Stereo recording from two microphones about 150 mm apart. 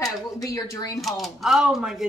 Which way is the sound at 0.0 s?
25° left (ahead or behind).